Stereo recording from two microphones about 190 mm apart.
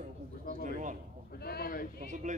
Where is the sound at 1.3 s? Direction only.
55° left (ahead or behind).